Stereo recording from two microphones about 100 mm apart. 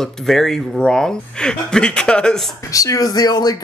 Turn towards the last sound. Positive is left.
turn(degrees=45)  # may be behind; listen again after turning